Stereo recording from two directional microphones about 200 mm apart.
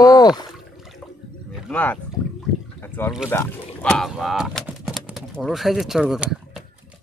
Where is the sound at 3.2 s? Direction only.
10° left (ahead or behind).